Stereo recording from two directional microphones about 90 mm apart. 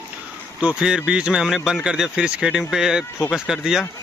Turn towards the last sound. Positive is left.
turn(degrees=-5)  # may be behind; listen again after turning